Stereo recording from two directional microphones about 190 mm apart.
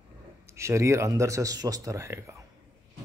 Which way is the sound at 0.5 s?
15° right (ahead or behind).